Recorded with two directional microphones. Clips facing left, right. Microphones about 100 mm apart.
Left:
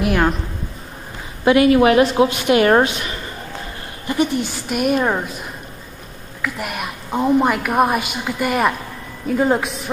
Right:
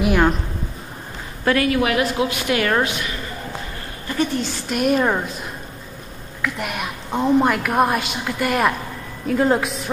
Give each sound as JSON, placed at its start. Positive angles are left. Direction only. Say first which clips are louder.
{"t": 0.0, "sound": "a woman's voice", "louder": "even", "side_deg": 0}
{"t": 1.4, "sound": "a woman's voice", "louder": "left 6 dB", "side_deg": 20}
{"t": 4.1, "sound": "a woman's voice", "louder": "left 3 dB", "side_deg": 15}
{"t": 4.6, "sound": "a woman's voice", "louder": "even", "side_deg": 5}
{"t": 6.4, "sound": "a woman's voice", "louder": "even", "side_deg": 0}